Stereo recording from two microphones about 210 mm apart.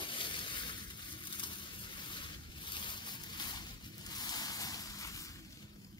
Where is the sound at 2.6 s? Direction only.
20° left (ahead or behind).